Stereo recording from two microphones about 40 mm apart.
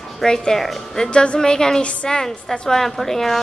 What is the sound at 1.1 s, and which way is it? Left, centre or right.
Speech, left.